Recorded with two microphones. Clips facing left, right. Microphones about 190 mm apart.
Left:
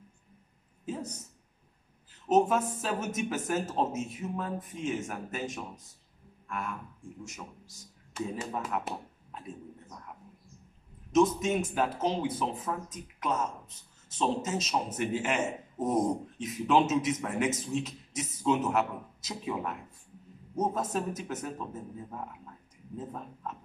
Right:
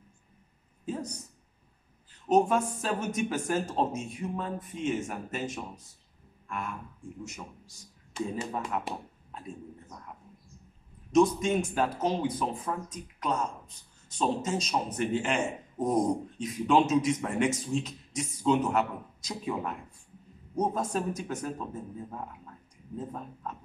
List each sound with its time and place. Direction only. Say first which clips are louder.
0.8 s speech: right 2 dB; 5° left (ahead or behind)
2.2 s a man's voice: right 1 dB; 5° left (ahead or behind)
7.2 s speech: right 1 dB; centre (ahead or behind)
11.1 s a man's voice: right 1 dB; centre (ahead or behind)